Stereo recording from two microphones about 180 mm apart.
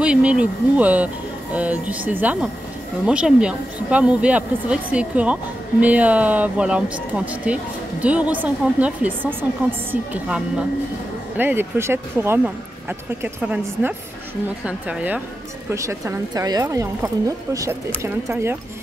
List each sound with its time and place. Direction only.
0.0 s speech: 5° right (ahead or behind)